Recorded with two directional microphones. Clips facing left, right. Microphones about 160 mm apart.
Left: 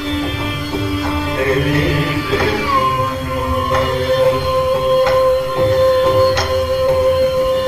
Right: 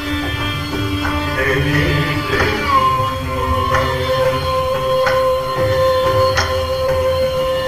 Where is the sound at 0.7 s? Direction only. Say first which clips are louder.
Left 1 dB; 25° left (ahead or behind).